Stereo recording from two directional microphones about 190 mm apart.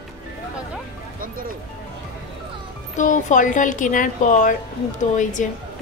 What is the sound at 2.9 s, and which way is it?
A woman's voice, 40° left (ahead or behind).